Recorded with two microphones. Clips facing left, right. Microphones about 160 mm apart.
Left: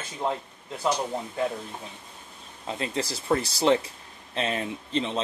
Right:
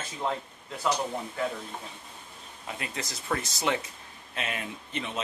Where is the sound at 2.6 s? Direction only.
30° left (ahead or behind).